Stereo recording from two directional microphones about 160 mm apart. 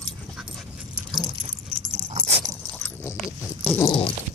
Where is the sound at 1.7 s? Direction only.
40° right (ahead or behind).